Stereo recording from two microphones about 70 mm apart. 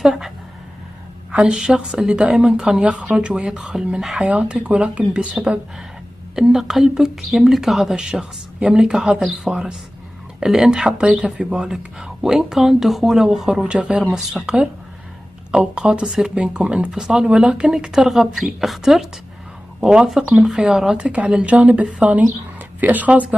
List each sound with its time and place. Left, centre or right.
0.0 s speech: centre
1.3 s speech: centre
4.3 s speech: centre